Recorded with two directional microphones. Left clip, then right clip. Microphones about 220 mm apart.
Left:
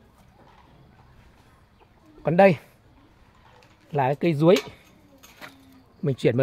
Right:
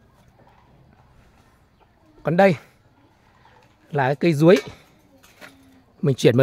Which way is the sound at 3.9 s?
20° right (ahead or behind).